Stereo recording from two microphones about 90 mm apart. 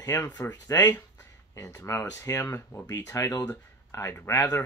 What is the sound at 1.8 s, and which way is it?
Speech, 35° left (ahead or behind).